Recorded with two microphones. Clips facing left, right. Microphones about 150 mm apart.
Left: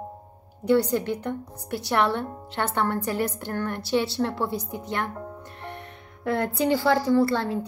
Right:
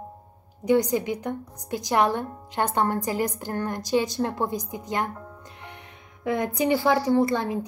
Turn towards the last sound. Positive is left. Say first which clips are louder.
# even
turn(degrees=-15)  # may be behind; listen again after turning